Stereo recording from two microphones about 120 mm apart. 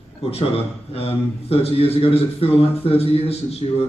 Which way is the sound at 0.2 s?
55° left (ahead or behind).